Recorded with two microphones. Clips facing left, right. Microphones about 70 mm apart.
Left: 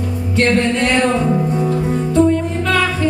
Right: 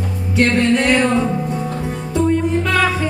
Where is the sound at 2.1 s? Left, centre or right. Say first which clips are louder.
Left 1 dB; centre.